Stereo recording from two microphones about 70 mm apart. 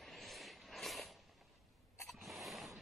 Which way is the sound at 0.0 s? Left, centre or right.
Centre.